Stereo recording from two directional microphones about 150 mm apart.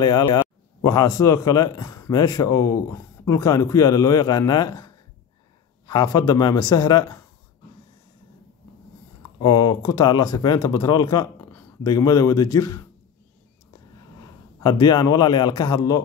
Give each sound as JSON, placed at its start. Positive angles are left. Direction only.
{"t": 0.0, "sound": "speech", "side_deg": 25}
{"t": 9.4, "sound": "speech", "side_deg": 25}
{"t": 14.6, "sound": "speech", "side_deg": 25}